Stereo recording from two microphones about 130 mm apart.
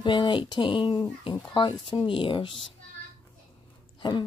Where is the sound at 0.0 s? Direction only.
35° left (ahead or behind).